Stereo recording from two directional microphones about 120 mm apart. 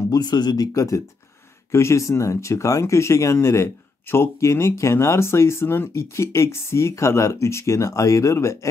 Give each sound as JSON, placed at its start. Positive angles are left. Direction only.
{"t": 0.1, "sound": "speech", "side_deg": 35}